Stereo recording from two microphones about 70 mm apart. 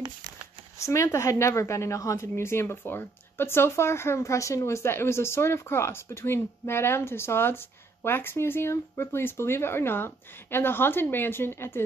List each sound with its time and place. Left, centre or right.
0.8 s a woman's voice: left